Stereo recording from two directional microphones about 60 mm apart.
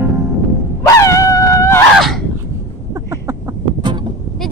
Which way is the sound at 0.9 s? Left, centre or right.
Left.